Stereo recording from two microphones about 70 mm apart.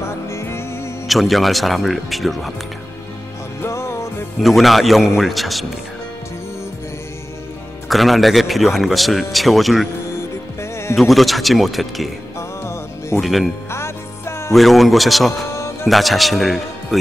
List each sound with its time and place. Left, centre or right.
0.0 s music: left
1.0 s speech: centre
3.6 s music: left
4.4 s speech: centre
7.9 s speech: centre
10.6 s music: left
11.0 s speech: centre
12.4 s music: left
13.2 s speech: centre
13.7 s music: left
14.5 s speech: centre
15.5 s music: left
15.9 s speech: centre